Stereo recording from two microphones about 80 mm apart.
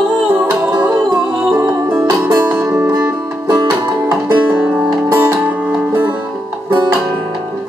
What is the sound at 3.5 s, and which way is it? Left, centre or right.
Music, right.